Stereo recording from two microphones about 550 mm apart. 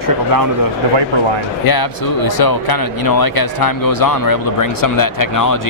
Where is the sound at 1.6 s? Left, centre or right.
Left.